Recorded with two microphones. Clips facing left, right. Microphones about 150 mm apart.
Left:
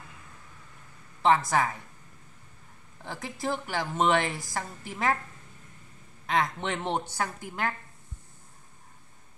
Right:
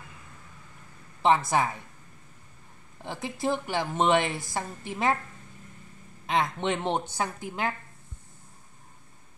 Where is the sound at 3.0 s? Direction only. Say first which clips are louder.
Right 3 dB; 20° right (ahead or behind).